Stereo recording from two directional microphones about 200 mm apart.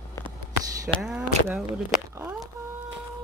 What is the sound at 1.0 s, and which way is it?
Speech, 5° right (ahead or behind).